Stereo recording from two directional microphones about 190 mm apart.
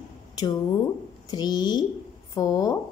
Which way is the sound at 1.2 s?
20° left (ahead or behind).